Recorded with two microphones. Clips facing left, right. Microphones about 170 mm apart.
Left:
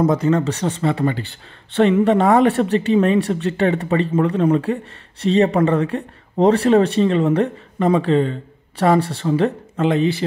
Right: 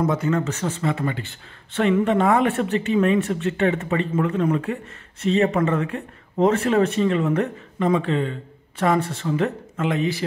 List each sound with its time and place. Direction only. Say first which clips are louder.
0.0 s speech: left 5 dB; 35° left (ahead or behind)